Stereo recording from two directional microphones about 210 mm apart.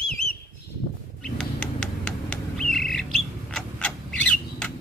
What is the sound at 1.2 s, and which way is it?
Bird, 5° left (ahead or behind).